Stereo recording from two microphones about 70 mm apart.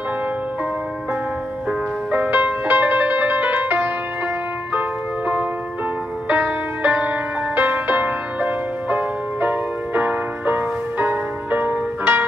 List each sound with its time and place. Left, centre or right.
2.1 s music: right